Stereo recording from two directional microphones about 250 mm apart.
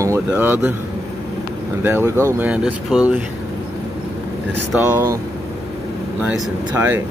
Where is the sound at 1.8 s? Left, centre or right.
Centre.